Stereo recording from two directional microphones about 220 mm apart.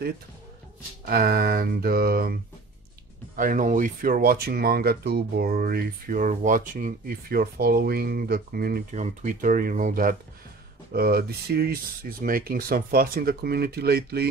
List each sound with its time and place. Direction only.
1.0 s speech: 40° right (ahead or behind)
3.3 s speech: 35° right (ahead or behind)